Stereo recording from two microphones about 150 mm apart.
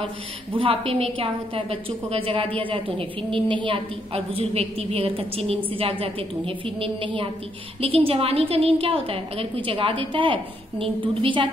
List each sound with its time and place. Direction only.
0.6 s a woman's voice: 40° right (ahead or behind)